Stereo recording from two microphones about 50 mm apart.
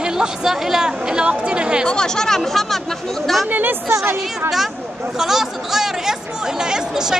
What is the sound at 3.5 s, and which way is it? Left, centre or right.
Speech, right.